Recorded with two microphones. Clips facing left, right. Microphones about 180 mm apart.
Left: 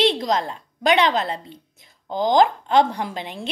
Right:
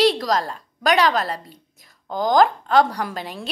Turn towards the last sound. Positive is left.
turn(degrees=20)  # may be behind; listen again after turning